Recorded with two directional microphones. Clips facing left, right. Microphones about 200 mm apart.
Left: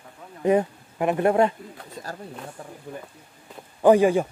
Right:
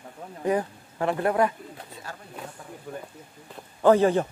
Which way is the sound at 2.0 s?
40° left (ahead or behind).